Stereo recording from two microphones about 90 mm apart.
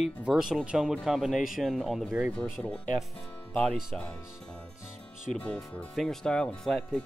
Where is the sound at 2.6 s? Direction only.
25° left (ahead or behind).